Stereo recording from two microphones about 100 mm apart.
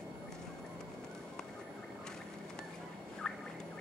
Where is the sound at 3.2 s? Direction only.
10° left (ahead or behind).